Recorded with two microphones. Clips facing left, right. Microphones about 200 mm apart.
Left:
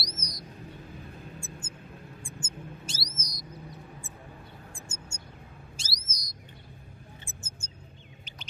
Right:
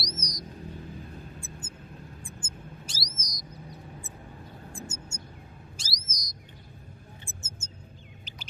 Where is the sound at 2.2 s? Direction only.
25° left (ahead or behind).